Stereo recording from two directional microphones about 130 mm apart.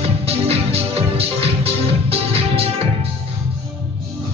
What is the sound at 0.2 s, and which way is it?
Music, 50° right (ahead or behind).